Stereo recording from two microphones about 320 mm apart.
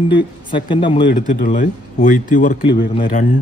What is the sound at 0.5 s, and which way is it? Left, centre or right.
Speech, centre.